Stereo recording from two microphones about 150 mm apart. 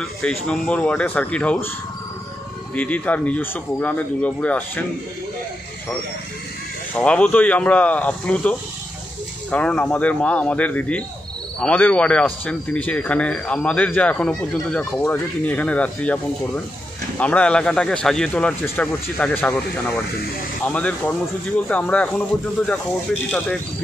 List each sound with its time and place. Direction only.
0.0 s speech: 5° left (ahead or behind)
2.7 s speech: 10° left (ahead or behind)
7.0 s speech: 10° left (ahead or behind)
20.6 s speech: 10° left (ahead or behind)